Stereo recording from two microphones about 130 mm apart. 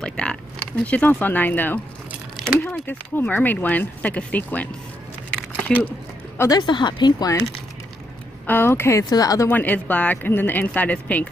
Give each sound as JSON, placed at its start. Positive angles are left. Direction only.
{"t": 0.0, "sound": "speech", "side_deg": 5}
{"t": 5.9, "sound": "a sound", "side_deg": 20}
{"t": 6.6, "sound": "speech", "side_deg": 35}
{"t": 8.5, "sound": "speech", "side_deg": 15}
{"t": 9.5, "sound": "speech", "side_deg": 15}